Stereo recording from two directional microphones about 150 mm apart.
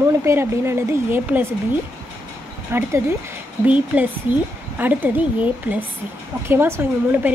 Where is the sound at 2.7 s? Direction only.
15° right (ahead or behind).